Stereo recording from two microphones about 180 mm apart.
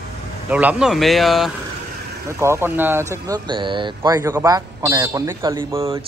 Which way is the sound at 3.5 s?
25° right (ahead or behind).